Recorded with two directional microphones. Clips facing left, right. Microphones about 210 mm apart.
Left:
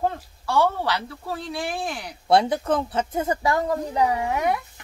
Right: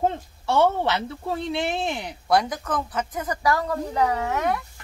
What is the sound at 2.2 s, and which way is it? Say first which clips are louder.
Speech: left 3 dB; 30° left (ahead or behind).